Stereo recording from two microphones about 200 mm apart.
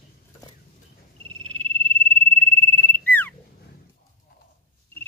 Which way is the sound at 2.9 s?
10° left (ahead or behind).